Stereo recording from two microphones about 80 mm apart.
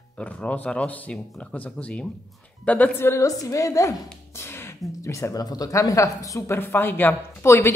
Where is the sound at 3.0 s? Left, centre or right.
Left.